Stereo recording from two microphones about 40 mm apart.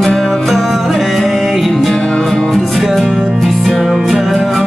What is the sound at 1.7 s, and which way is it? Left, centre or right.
Music, centre.